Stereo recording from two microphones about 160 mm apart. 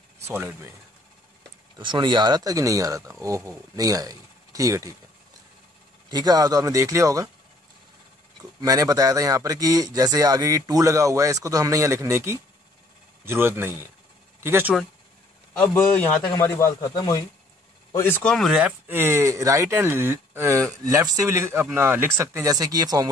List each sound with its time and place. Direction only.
0.3 s speech: 15° right (ahead or behind)
1.8 s speech: 30° right (ahead or behind)
6.0 s speech: 25° right (ahead or behind)
8.4 s speech: 25° right (ahead or behind)
15.6 s a man's voice: 10° left (ahead or behind)
17.9 s speech: 15° left (ahead or behind)
18.5 s speech: 10° right (ahead or behind)